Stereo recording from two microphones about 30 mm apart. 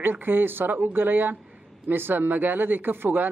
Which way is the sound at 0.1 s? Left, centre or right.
Right.